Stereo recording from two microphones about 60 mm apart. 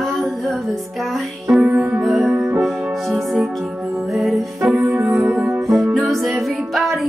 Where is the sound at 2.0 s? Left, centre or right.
Centre.